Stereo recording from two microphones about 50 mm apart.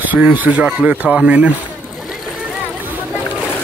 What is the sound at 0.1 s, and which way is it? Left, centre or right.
Speech, right.